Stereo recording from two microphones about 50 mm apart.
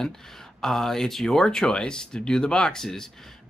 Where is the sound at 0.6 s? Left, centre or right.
Centre.